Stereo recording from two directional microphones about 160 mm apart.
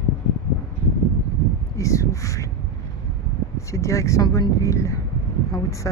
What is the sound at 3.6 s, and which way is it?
Speech, 20° left (ahead or behind).